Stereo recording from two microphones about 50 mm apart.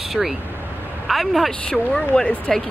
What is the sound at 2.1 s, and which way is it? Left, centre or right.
Speech, centre.